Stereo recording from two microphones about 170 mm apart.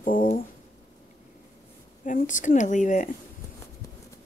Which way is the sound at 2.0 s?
50° left (ahead or behind).